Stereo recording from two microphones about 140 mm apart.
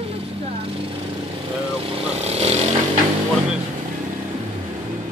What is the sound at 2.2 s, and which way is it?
Vehicle, 50° right (ahead or behind).